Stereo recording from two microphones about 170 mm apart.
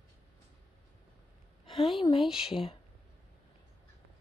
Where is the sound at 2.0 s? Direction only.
30° left (ahead or behind).